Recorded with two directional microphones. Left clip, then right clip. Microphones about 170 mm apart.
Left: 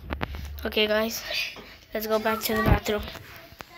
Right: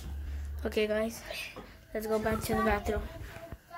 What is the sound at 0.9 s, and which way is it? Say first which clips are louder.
A woman's voice: left 7 dB; 10° left (ahead or behind).